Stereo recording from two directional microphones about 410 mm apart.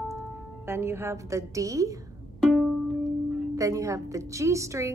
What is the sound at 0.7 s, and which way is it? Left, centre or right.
A woman's voice, centre.